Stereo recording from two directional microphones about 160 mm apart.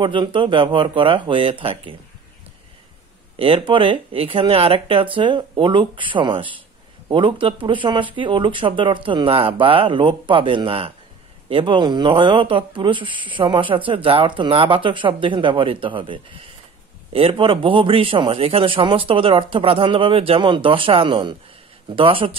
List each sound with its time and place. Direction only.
0.0 s speech: 30° right (ahead or behind)
3.3 s speech: 35° right (ahead or behind)